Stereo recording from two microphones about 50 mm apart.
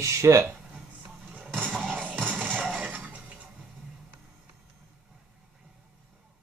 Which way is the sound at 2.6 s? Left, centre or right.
Right.